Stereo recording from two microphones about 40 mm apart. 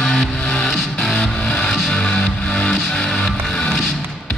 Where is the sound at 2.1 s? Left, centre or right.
Left.